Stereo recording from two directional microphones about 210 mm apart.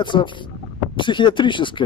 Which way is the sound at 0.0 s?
20° left (ahead or behind).